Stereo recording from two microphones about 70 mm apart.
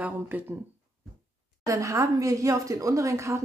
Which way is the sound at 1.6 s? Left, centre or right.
Right.